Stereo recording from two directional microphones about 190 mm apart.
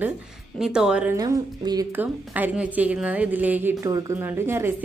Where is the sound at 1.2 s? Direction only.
20° right (ahead or behind).